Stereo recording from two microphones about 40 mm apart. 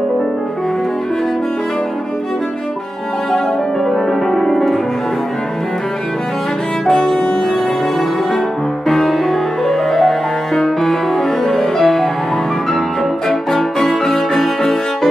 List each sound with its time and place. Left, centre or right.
3.8 s music: centre
6.9 s music: centre
8.8 s music: centre
13.5 s music: centre